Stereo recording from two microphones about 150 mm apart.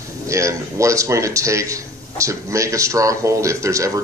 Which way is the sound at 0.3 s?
20° right (ahead or behind).